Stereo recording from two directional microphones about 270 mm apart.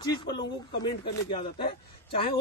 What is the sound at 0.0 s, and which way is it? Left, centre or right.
Speech, centre.